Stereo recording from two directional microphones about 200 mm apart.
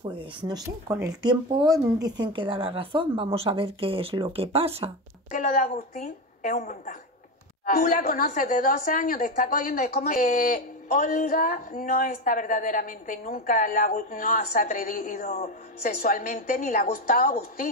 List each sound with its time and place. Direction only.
0.5 s speech: 15° right (ahead or behind)
5.3 s a woman's voice: 40° left (ahead or behind)